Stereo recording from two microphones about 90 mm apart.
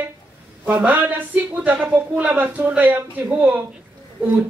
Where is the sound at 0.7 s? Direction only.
20° right (ahead or behind).